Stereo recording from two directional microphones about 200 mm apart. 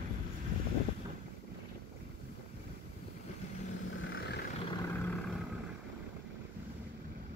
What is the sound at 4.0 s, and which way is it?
Vehicle, 70° left (ahead or behind).